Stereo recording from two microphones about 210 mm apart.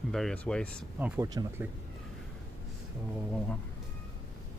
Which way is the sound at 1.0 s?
15° right (ahead or behind).